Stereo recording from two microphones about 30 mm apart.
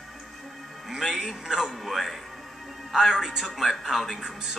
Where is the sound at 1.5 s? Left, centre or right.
Centre.